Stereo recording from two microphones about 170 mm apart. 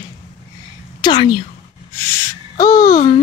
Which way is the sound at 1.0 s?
25° left (ahead or behind).